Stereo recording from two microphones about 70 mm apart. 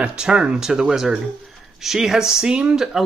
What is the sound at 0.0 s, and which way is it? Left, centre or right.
Speech, centre.